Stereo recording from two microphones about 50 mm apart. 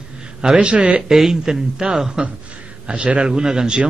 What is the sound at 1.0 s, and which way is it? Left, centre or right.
A man's voice, centre.